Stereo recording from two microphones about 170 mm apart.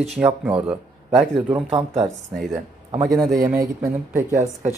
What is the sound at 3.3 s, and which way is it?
Speech, 20° right (ahead or behind).